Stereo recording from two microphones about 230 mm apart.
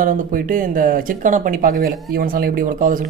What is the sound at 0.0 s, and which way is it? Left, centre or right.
Speech, right.